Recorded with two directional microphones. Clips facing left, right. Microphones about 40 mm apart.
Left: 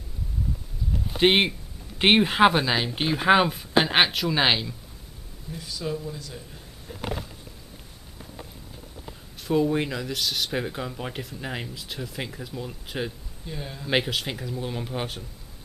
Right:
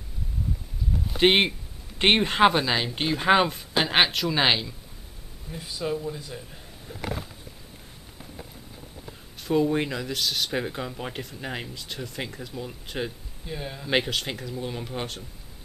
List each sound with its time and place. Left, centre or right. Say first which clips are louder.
1.0 s a sound: even; centre
2.0 s speech: left 1 dB; centre
5.5 s a man's voice: right 2 dB; right
9.4 s speech: even; centre
13.5 s a man's voice: right 1 dB; centre
13.8 s speech: even; centre